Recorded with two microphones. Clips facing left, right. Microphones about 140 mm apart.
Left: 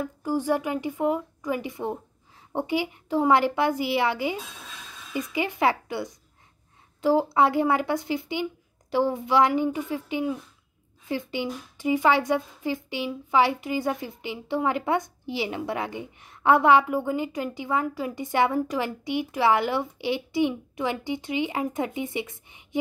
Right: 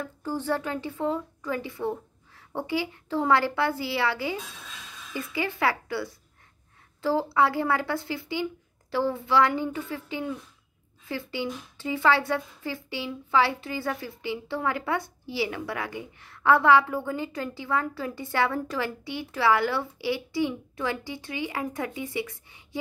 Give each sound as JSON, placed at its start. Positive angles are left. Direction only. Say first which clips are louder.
{"t": 0.0, "sound": "a woman's voice", "louder": "left 4 dB", "side_deg": 10}